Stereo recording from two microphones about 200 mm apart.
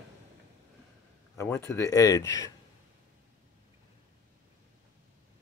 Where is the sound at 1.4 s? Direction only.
15° left (ahead or behind).